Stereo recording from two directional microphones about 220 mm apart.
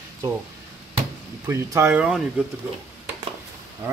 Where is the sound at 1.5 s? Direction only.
10° right (ahead or behind).